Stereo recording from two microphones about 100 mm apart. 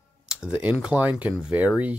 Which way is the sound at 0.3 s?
10° right (ahead or behind).